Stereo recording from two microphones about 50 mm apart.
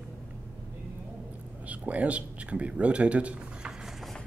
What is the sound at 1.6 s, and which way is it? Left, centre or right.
Speech, right.